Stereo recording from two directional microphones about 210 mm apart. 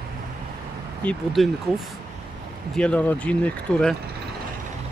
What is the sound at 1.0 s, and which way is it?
Speech, 5° left (ahead or behind).